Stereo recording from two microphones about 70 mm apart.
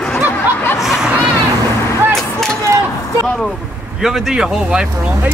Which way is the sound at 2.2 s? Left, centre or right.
Centre.